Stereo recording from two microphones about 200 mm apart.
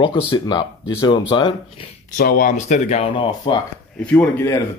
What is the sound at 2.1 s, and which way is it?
Speech, 45° left (ahead or behind).